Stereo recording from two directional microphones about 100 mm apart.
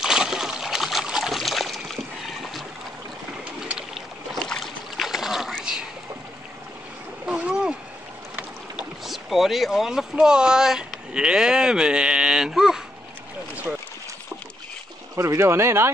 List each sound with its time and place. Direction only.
0.0 s trickle: 5° right (ahead or behind)
3.7 s rowboat: centre (ahead or behind)
7.2 s a sound: 15° right (ahead or behind)
8.4 s boat: 5° right (ahead or behind)
15.1 s speech: 30° right (ahead or behind)